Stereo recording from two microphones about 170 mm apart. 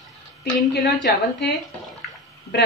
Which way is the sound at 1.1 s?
70° left (ahead or behind).